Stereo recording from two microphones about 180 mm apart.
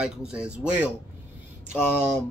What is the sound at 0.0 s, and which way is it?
Speech, 5° right (ahead or behind).